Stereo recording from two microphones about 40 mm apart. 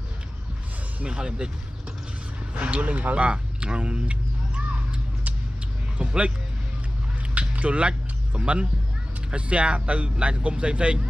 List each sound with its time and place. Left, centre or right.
1.0 s speech: right
2.6 s speech: right
3.3 s a sound: right
5.9 s speech: right
7.3 s a sound: right
9.3 s speech: right